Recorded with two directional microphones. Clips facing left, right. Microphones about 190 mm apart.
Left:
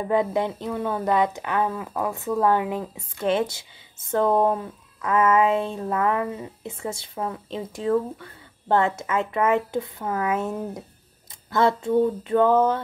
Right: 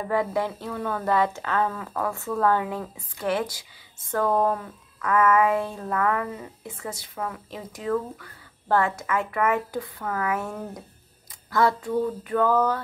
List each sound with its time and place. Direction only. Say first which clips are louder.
0.0 s speech: left 3 dB; 20° left (ahead or behind)